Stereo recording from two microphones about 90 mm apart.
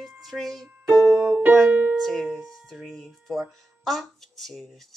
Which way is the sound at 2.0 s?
Centre (ahead or behind).